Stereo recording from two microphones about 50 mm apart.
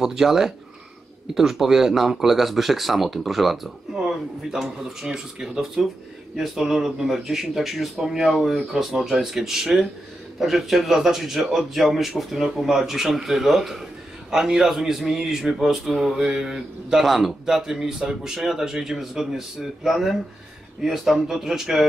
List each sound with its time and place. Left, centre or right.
0.0 s a man's voice: centre
4.5 s a man's voice: centre